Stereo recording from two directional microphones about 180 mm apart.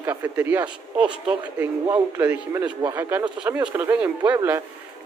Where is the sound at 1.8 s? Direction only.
20° right (ahead or behind).